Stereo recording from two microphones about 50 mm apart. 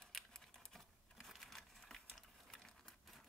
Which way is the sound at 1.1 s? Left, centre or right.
Centre.